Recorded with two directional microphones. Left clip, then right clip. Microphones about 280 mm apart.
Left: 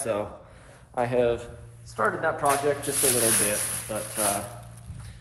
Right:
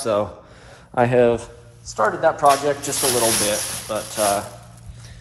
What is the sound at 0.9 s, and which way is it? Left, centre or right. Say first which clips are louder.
Speech: right 8 dB; right.